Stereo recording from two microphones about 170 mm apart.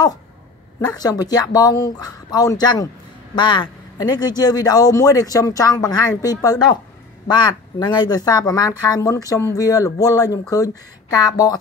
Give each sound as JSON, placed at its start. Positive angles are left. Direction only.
{"t": 0.7, "sound": "speech", "side_deg": 25}